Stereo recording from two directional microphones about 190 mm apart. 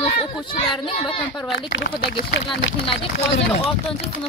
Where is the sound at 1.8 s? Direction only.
55° left (ahead or behind).